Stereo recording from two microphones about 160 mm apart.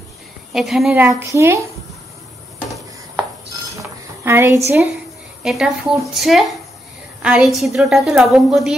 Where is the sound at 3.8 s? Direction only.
15° right (ahead or behind).